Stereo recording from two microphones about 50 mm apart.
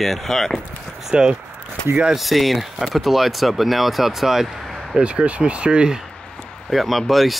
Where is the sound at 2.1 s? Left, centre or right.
Centre.